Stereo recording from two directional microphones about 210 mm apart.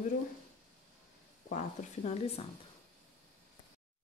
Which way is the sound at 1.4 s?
35° left (ahead or behind).